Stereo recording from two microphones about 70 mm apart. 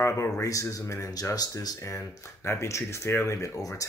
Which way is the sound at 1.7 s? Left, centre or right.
Left.